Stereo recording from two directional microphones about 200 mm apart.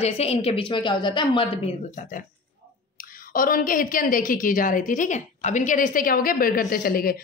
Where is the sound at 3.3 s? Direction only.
45° left (ahead or behind).